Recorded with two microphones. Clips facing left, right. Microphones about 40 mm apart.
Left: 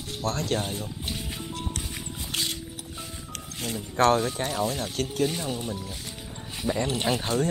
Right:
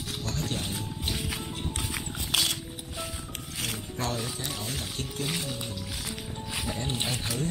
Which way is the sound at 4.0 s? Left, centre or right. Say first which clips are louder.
Left 13 dB; left.